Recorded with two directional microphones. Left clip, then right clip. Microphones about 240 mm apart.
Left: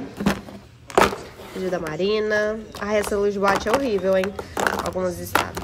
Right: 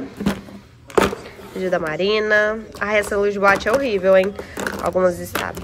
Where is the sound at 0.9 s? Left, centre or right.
Centre.